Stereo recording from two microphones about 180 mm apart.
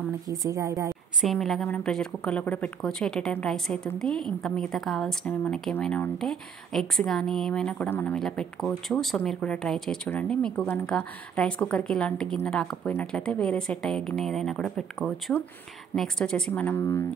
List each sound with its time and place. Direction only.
0.3 s speech: 20° right (ahead or behind)
1.2 s a woman's voice: centre (ahead or behind)